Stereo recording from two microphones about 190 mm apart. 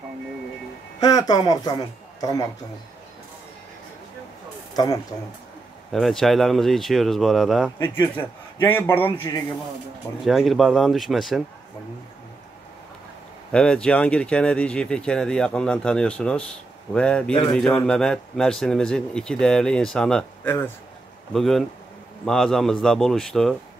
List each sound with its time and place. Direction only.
1.0 s a woman's voice: 20° left (ahead or behind)
4.7 s a woman's voice: 20° left (ahead or behind)
5.9 s a man's voice: centre (ahead or behind)
10.2 s speech: centre (ahead or behind)
13.5 s speech: 5° left (ahead or behind)
21.3 s speech: centre (ahead or behind)